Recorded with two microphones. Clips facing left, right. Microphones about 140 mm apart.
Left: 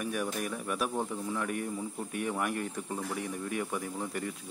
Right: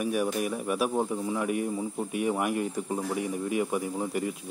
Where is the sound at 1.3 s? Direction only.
10° right (ahead or behind).